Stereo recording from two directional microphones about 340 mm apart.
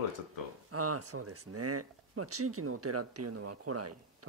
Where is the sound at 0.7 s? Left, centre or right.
Right.